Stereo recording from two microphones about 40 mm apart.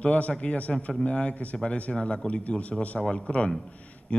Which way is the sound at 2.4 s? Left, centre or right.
Left.